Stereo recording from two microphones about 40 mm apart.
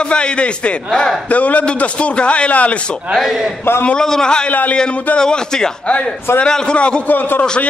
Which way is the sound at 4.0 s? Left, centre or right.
Centre.